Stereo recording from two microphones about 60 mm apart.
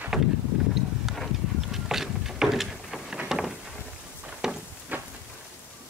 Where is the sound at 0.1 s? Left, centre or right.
Centre.